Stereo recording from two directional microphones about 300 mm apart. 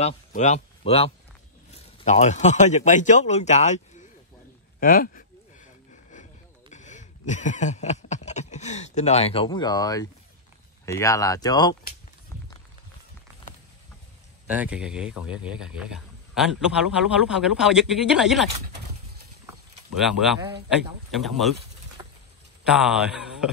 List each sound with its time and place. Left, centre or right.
0.0 s a man's voice: left
6.7 s a sound: left
10.9 s speech: centre
14.5 s speech: centre
20.0 s speech: centre
22.6 s speech: centre